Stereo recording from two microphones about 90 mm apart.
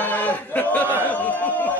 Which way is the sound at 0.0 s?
20° left (ahead or behind).